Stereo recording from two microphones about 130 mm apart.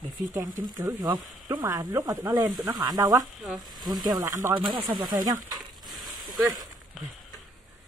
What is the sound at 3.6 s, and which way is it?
Speech, 30° right (ahead or behind).